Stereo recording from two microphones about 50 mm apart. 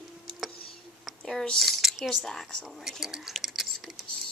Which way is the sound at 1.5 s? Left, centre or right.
Centre.